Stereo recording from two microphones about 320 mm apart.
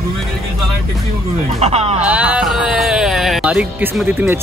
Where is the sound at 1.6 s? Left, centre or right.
Centre.